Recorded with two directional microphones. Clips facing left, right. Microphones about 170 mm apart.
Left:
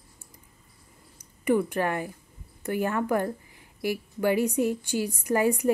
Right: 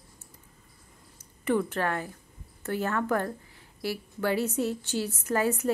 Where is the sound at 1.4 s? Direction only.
10° left (ahead or behind).